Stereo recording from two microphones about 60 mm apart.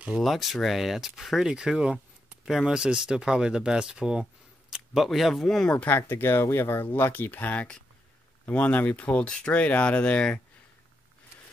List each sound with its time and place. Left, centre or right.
0.2 s speech: centre
5.9 s speech: left; by 10.4 s centre